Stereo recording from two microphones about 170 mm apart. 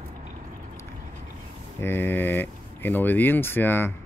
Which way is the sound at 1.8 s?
15° left (ahead or behind).